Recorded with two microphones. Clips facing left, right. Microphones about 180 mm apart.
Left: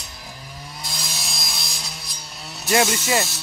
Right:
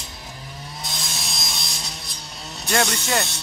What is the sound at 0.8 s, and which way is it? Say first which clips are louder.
Wood: even; centre (ahead or behind).